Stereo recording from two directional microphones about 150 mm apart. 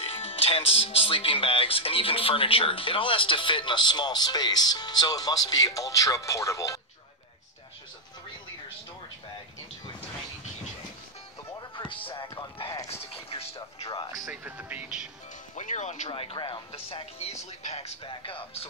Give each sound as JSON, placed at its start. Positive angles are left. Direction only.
{"t": 0.0, "sound": "speech", "side_deg": 40}
{"t": 11.5, "sound": "music", "side_deg": 30}
{"t": 13.3, "sound": "music", "side_deg": 40}
{"t": 14.4, "sound": "speech", "side_deg": -10}
{"t": 15.5, "sound": "speech", "side_deg": 50}
{"t": 16.1, "sound": "speech", "side_deg": 35}